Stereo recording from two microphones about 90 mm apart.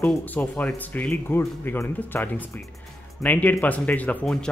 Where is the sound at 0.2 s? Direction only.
20° left (ahead or behind).